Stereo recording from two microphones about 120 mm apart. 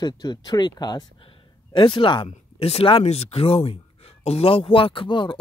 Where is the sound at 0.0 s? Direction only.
35° left (ahead or behind).